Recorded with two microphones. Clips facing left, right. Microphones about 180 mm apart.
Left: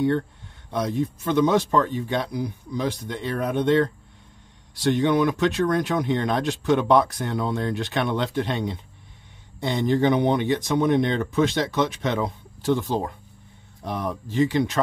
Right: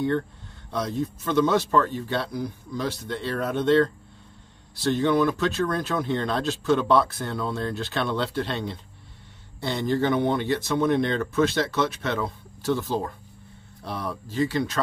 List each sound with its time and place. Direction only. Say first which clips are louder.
0.7 s speech: left 3 dB; 15° left (ahead or behind)